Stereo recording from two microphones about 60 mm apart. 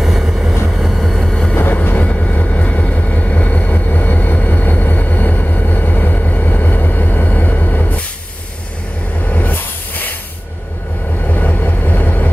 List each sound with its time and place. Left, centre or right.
0.0 s train: centre
0.7 s vehicle: centre
1.5 s train: left
9.2 s hiss: left
11.2 s train: left